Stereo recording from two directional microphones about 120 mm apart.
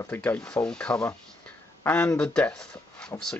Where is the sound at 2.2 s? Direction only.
5° left (ahead or behind).